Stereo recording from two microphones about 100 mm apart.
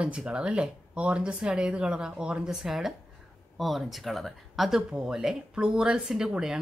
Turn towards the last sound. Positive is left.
turn(degrees=-5)  # may be behind; listen again after turning